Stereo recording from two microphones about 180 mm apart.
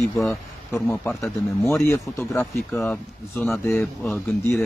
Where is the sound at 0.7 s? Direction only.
5° left (ahead or behind).